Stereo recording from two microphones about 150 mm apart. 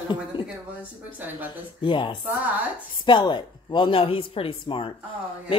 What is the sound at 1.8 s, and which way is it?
A woman's voice, 35° left (ahead or behind).